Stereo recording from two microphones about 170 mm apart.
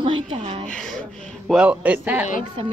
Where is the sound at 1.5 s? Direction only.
5° right (ahead or behind).